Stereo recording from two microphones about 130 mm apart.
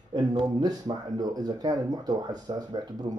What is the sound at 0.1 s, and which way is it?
Speech, 30° right (ahead or behind).